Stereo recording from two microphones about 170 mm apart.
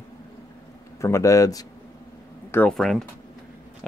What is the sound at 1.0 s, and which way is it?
Speech, 20° left (ahead or behind).